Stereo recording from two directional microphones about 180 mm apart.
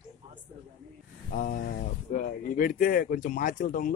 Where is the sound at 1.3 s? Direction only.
50° left (ahead or behind).